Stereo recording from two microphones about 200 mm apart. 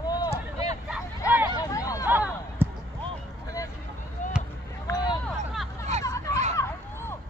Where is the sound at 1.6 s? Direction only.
15° left (ahead or behind).